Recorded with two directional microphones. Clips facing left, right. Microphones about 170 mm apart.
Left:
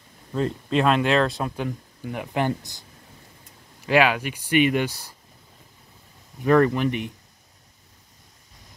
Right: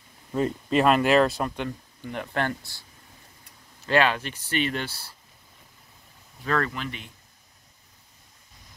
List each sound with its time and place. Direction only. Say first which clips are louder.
0.3 s speech: even; 5° right (ahead or behind); by 2.8 s 15° left (ahead or behind)
3.8 s speech: left 3 dB; 10° left (ahead or behind)
6.4 s speech: left 9 dB; 15° left (ahead or behind)